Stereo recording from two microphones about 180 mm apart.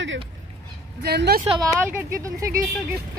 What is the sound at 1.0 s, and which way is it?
Speech, 65° right (ahead or behind).